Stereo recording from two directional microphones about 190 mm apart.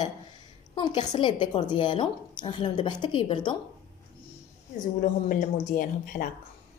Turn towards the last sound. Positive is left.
turn(degrees=45)  # may be behind; listen again after turning